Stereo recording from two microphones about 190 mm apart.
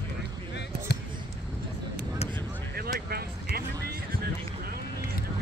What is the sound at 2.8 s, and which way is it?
Vehicle, 55° right (ahead or behind).